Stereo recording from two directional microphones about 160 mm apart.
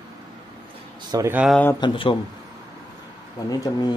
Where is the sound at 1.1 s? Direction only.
15° right (ahead or behind).